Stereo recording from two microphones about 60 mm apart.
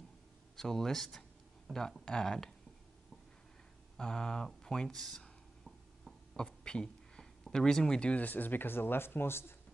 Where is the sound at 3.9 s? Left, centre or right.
Centre.